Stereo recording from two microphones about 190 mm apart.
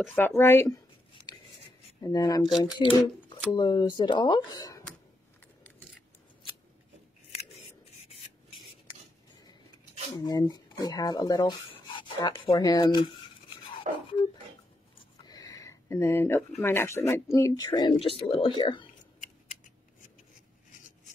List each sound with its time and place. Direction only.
0.0 s speech: 5° left (ahead or behind)
2.0 s speech: 20° left (ahead or behind)
10.1 s speech: 20° left (ahead or behind)
13.7 s toothbrush: 25° left (ahead or behind)
15.2 s a sound: 20° left (ahead or behind)
16.6 s speech: 15° left (ahead or behind)